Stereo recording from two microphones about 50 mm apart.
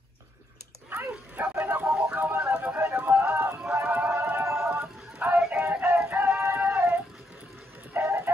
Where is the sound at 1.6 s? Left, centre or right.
Right.